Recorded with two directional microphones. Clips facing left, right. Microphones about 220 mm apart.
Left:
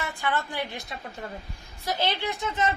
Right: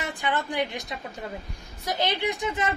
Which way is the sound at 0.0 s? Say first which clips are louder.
Right 1 dB; 20° right (ahead or behind).